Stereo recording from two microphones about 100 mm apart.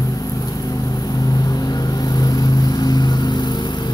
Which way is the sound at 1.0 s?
40° left (ahead or behind).